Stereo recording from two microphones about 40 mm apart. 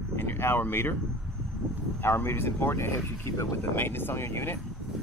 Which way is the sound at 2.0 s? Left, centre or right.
Left.